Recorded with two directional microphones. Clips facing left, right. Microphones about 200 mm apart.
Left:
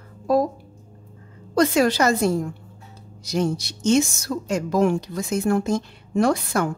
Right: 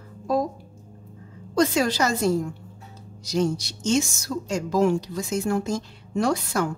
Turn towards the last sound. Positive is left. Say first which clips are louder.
# left 3 dB
turn(degrees=55)  # may be behind; listen again after turning